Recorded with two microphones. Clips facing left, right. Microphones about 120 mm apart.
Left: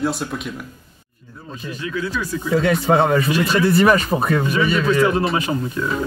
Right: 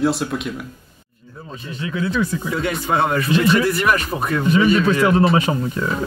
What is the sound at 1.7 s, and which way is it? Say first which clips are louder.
Speech: right 2 dB; 25° right (ahead or behind).